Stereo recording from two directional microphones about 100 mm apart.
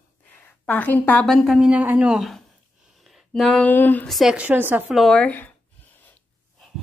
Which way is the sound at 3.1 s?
Centre (ahead or behind).